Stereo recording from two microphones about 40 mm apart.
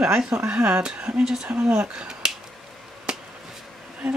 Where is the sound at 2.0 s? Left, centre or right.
Centre.